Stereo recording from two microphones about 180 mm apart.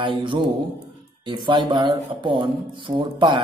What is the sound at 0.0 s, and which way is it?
A man's voice, 25° right (ahead or behind).